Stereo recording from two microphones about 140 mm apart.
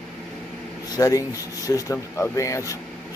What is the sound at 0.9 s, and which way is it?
Speech, 25° left (ahead or behind).